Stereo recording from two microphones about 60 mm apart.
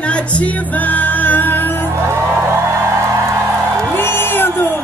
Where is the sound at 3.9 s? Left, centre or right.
Left.